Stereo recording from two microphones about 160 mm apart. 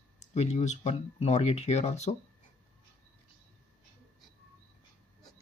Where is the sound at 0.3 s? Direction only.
45° left (ahead or behind).